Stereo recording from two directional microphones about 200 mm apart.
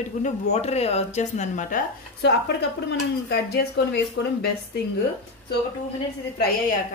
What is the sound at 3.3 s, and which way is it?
Speech, 55° left (ahead or behind).